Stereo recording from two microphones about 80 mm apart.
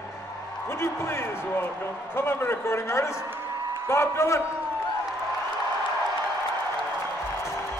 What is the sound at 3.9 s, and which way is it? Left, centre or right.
Speech, left.